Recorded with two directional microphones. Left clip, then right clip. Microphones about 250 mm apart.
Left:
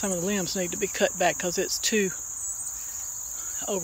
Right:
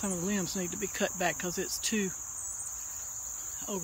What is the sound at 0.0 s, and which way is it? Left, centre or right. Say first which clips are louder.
Cricket: left 6 dB; centre.